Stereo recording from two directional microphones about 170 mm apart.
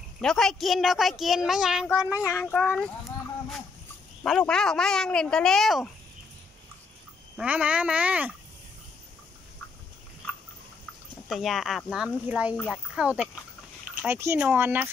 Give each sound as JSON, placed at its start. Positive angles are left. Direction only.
{"t": 0.2, "sound": "a woman's voice", "side_deg": 5}
{"t": 2.1, "sound": "speech", "side_deg": 20}
{"t": 2.5, "sound": "a woman's voice", "side_deg": 0}
{"t": 4.2, "sound": "a woman's voice", "side_deg": 5}
{"t": 7.3, "sound": "speech", "side_deg": -5}
{"t": 11.2, "sound": "a woman's voice", "side_deg": 0}
{"t": 12.5, "sound": "a woman's voice", "side_deg": 0}